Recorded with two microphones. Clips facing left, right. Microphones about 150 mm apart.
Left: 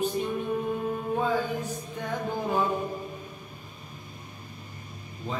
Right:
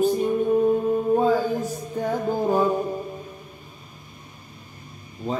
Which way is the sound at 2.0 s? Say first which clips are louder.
Right 8 dB; 40° right (ahead or behind).